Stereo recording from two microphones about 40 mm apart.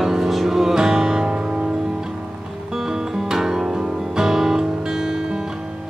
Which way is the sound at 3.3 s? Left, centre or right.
Centre.